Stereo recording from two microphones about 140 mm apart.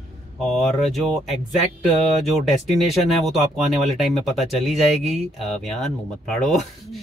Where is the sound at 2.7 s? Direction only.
Centre (ahead or behind).